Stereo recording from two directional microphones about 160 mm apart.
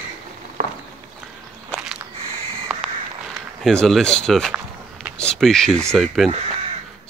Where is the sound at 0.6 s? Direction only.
60° right (ahead or behind).